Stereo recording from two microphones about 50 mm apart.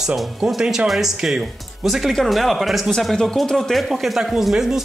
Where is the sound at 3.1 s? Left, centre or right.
Centre.